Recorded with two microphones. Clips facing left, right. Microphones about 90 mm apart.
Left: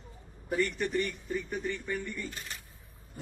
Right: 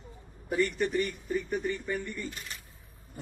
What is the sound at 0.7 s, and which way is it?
A man's voice, 5° right (ahead or behind).